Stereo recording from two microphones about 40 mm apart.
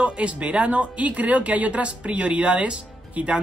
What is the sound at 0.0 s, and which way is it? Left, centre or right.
Speech, right.